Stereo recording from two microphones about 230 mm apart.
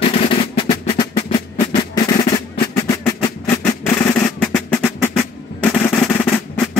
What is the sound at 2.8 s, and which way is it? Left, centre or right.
Music, centre.